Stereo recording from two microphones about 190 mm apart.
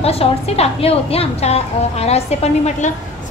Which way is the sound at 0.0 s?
30° left (ahead or behind).